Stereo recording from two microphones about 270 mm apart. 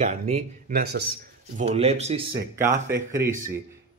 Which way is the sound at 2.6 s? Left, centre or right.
Centre.